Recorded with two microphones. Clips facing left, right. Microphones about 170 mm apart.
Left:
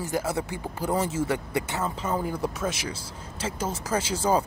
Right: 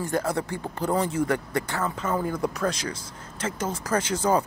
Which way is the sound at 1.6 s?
25° left (ahead or behind).